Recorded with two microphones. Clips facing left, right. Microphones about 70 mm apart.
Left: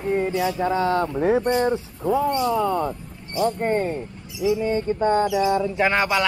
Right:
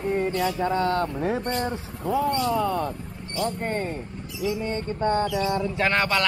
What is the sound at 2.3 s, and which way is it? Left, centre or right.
Speech, centre.